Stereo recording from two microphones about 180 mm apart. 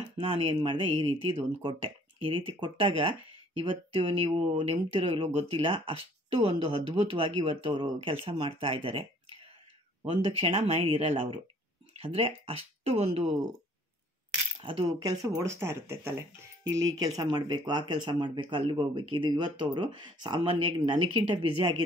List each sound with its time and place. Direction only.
0.2 s speech: 30° right (ahead or behind)
10.0 s speech: 30° right (ahead or behind)
14.6 s speech: 25° right (ahead or behind)